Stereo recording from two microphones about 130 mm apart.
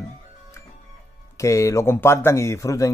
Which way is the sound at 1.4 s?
25° left (ahead or behind).